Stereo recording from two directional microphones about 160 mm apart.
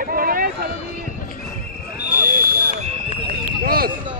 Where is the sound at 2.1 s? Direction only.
65° right (ahead or behind).